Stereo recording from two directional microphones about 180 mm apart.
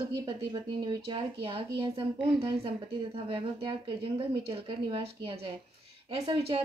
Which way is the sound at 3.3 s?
30° right (ahead or behind).